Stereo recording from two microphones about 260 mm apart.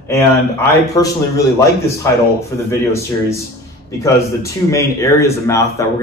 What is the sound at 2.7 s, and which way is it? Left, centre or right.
A man's voice, centre.